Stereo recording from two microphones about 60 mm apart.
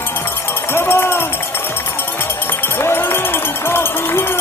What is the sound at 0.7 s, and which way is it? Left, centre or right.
Run, left.